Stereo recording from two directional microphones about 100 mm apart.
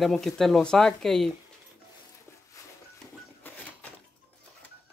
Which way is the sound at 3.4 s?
20° left (ahead or behind).